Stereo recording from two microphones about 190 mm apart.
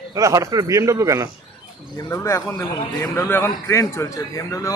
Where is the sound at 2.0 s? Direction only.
15° left (ahead or behind).